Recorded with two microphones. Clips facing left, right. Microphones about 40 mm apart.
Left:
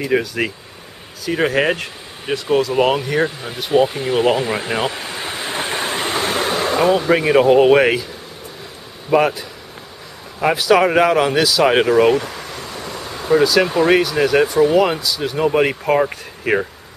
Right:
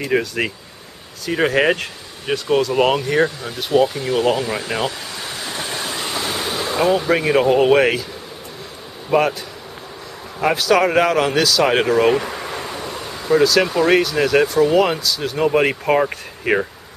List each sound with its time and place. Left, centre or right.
0.0 s speech: centre
3.5 s a sound: centre; by 6.8 s left
6.8 s speech: centre
9.1 s speech: centre
10.4 s speech: centre
12.1 s speech: centre
12.4 s a sound: right
12.7 s a sound: centre
13.7 s speech: centre